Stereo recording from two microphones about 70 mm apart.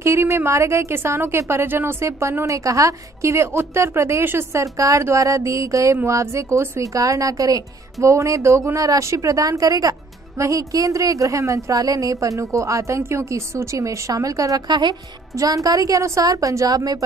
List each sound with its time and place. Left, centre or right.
0.0 s a woman's voice: right
14.7 s a woman's voice: right
15.3 s a woman's voice: right